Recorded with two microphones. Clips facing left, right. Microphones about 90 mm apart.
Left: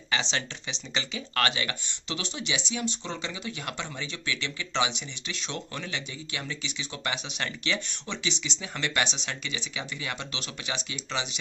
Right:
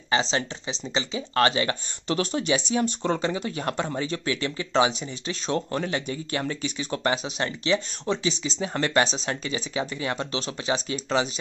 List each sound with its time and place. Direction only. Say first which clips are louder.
0.1 s speech: right 6 dB; 35° right (ahead or behind)